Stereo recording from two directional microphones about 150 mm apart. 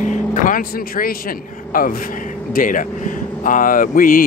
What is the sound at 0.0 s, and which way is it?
A man's voice, 55° left (ahead or behind).